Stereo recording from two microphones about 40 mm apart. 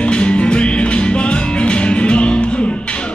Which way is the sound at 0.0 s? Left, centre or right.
Left.